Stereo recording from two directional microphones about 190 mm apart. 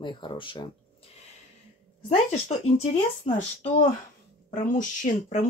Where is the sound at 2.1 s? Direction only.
35° left (ahead or behind).